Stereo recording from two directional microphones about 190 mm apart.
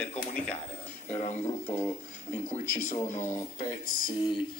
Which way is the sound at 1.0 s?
35° left (ahead or behind).